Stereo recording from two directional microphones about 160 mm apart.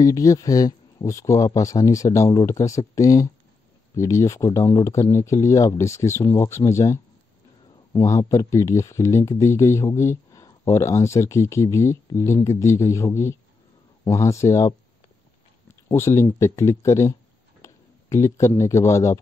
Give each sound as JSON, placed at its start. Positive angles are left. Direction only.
{"t": 0.0, "sound": "speech", "side_deg": 20}
{"t": 15.9, "sound": "speech", "side_deg": 15}